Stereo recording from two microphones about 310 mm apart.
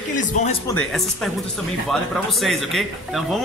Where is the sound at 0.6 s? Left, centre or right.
Centre.